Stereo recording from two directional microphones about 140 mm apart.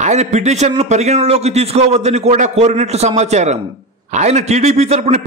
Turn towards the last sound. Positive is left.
turn(degrees=-50)  # may be behind; listen again after turning